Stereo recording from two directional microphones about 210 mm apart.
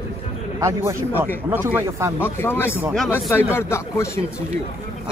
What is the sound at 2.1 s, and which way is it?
Speech, 10° left (ahead or behind).